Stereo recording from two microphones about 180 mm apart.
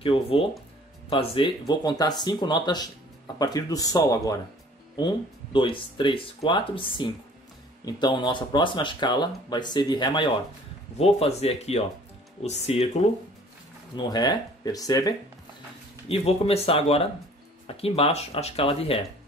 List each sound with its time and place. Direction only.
0.0 s speech: 30° left (ahead or behind)
13.9 s speech: 20° left (ahead or behind)
16.1 s speech: 35° left (ahead or behind)